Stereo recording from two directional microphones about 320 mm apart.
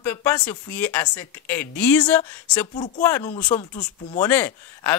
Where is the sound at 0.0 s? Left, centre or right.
Centre.